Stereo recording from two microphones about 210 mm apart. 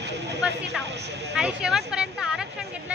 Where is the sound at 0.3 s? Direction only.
55° right (ahead or behind).